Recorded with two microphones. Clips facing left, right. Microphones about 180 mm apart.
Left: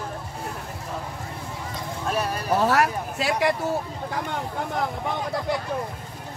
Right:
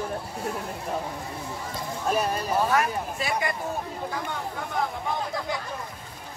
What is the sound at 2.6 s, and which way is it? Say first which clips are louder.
Speech: left 4 dB; 75° left (ahead or behind).